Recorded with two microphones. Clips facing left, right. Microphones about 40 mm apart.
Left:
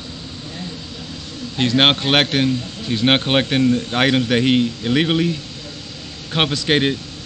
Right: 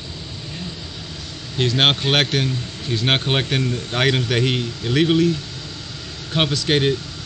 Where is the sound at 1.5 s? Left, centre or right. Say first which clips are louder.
Left 2 dB; left.